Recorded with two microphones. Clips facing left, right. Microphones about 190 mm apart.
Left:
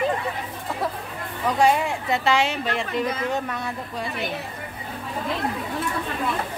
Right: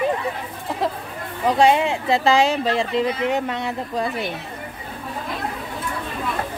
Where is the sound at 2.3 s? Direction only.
40° right (ahead or behind).